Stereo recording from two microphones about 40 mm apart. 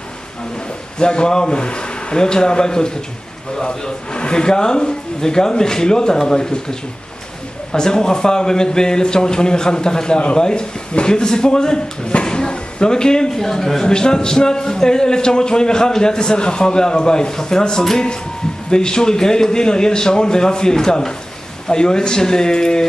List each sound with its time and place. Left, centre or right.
0.9 s a man's voice: left